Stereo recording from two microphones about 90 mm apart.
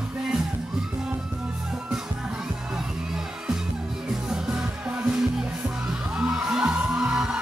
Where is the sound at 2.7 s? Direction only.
5° right (ahead or behind).